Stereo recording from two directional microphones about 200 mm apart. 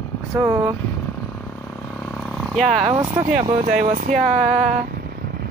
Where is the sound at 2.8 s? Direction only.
30° right (ahead or behind).